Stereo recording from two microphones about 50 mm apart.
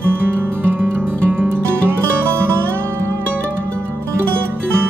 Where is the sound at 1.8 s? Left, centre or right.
Right.